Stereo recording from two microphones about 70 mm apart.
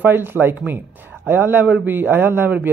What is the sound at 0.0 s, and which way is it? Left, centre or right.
A man's voice, right.